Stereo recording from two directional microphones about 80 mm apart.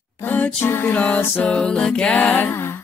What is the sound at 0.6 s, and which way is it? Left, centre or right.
Music, left.